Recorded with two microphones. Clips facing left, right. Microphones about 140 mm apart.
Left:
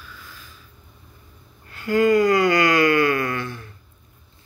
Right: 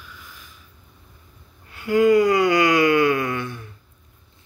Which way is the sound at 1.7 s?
15° right (ahead or behind).